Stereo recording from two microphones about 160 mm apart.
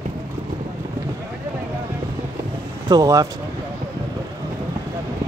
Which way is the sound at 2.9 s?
20° right (ahead or behind).